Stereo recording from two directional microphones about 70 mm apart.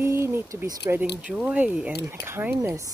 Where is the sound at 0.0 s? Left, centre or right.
Right.